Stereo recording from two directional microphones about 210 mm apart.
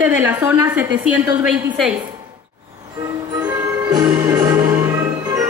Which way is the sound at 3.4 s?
15° right (ahead or behind).